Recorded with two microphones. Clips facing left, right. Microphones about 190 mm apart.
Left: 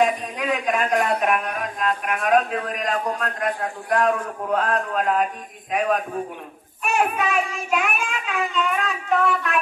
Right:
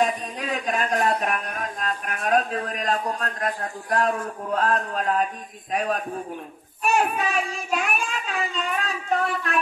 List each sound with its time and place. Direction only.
0.0 s a sound: 35° right (ahead or behind)
0.9 s child singing: 35° right (ahead or behind)
6.8 s child singing: 35° right (ahead or behind)